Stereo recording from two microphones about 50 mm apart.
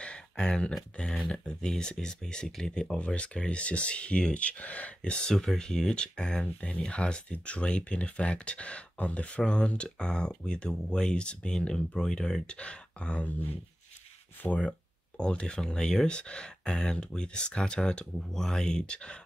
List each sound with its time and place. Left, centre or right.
0.0 s a sound: left
0.9 s speech: centre
2.7 s speech: centre
5.3 s speech: centre
14.4 s speech: left